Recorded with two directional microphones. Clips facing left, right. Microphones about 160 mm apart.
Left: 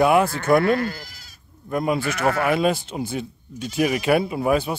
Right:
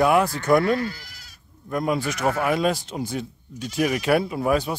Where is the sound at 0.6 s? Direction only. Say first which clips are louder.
Left 2 dB; 55° left (ahead or behind).